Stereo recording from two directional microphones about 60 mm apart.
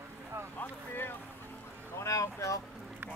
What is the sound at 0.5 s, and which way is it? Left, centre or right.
Boat, left.